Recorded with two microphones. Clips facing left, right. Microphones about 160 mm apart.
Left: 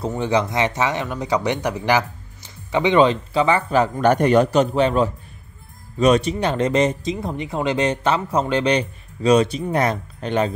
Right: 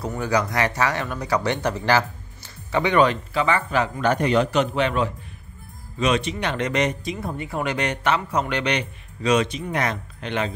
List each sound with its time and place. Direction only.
0.0 s speech: 25° left (ahead or behind)
4.0 s speech: 50° left (ahead or behind)